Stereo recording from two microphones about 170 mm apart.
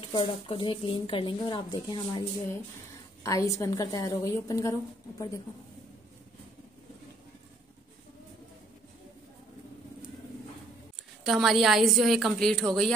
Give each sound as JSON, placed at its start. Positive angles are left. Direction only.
{"t": 0.0, "sound": "a woman's voice", "side_deg": 30}
{"t": 3.3, "sound": "a woman's voice", "side_deg": 20}
{"t": 11.2, "sound": "a woman's voice", "side_deg": 0}